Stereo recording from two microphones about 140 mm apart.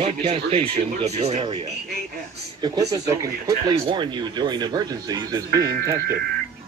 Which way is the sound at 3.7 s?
35° right (ahead or behind).